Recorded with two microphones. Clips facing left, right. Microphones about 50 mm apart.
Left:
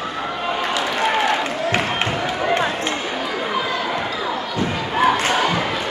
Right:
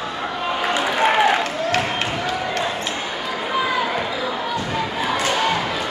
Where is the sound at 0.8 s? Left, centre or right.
Centre.